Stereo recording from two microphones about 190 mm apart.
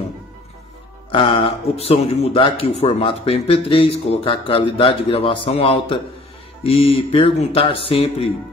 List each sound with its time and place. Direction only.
1.1 s speech: 30° left (ahead or behind)